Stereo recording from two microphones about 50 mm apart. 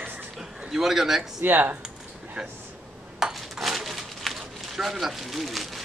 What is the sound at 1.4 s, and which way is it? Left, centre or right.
Speech, right.